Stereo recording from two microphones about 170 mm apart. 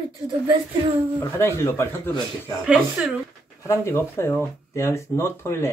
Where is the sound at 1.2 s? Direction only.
15° left (ahead or behind).